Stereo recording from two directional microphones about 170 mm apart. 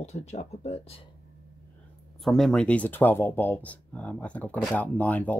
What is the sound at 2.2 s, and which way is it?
Speech, centre (ahead or behind).